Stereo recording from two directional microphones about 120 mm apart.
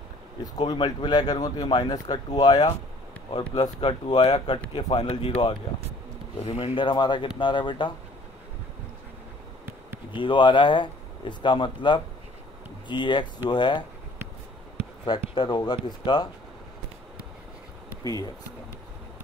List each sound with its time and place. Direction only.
0.7 s speech: 40° left (ahead or behind)
6.4 s speech: 50° left (ahead or behind)
10.1 s speech: 45° left (ahead or behind)
15.0 s speech: 45° left (ahead or behind)
18.0 s speech: 30° left (ahead or behind)